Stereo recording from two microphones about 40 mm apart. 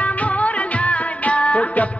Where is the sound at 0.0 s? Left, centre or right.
Left.